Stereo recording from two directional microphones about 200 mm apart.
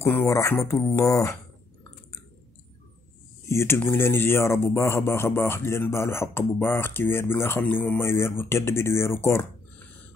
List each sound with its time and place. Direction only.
0.0 s speech: 10° left (ahead or behind)
3.4 s speech: 15° left (ahead or behind)